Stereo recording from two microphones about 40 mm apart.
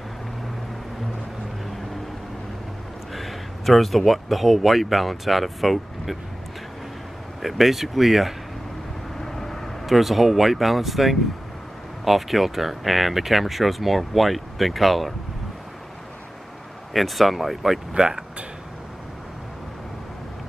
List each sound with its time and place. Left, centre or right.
3.1 s speech: centre
7.4 s speech: centre
9.2 s vehicle: centre
9.8 s speech: centre
16.9 s speech: centre
17.9 s speech: centre